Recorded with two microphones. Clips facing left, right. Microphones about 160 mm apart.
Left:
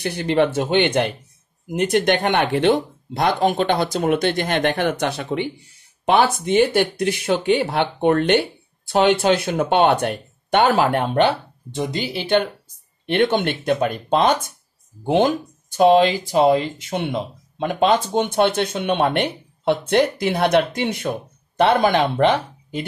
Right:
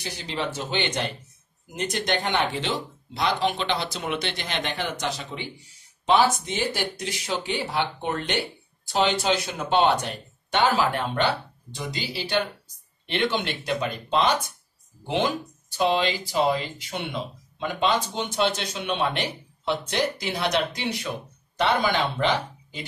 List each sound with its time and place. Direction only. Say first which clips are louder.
0.0 s speech: left 12 dB; 60° left (ahead or behind)